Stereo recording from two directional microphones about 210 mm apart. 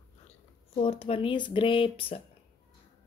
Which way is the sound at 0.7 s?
30° left (ahead or behind).